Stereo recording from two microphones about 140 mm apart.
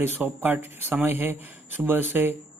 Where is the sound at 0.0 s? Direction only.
15° right (ahead or behind).